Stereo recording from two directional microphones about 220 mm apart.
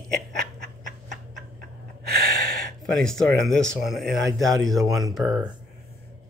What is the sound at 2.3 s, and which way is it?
Speech, centre (ahead or behind).